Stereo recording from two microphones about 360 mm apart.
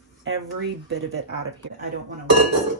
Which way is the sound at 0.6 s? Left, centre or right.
Right.